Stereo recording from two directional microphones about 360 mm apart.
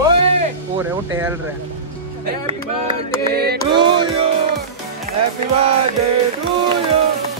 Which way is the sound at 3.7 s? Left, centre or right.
Centre.